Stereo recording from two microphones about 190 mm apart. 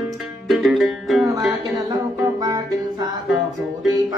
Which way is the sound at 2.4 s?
20° right (ahead or behind).